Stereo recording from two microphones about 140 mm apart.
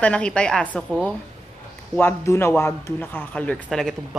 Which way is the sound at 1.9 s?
15° left (ahead or behind).